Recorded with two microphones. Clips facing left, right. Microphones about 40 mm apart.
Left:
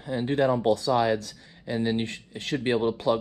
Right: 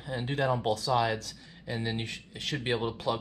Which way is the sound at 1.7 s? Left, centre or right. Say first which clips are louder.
Left 7 dB; left.